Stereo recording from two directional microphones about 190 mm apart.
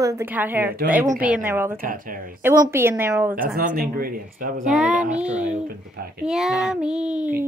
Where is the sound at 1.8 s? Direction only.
45° right (ahead or behind).